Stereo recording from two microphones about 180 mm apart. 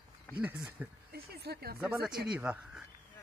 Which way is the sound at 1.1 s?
60° right (ahead or behind).